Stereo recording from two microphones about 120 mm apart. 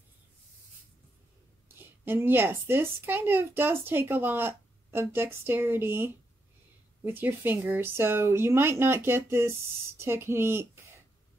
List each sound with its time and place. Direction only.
1.8 s speech: 20° right (ahead or behind)